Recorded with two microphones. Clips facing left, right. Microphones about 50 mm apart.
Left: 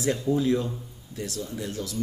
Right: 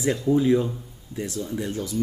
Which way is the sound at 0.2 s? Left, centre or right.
Centre.